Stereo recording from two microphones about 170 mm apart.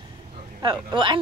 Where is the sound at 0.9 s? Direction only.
30° right (ahead or behind).